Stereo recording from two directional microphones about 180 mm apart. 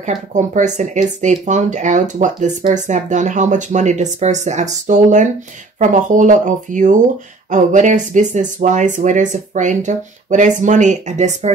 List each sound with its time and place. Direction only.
0.0 s speech: 45° right (ahead or behind)